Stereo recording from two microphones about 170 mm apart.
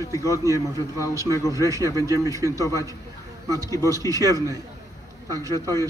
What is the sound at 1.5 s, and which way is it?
Speech, 20° right (ahead or behind).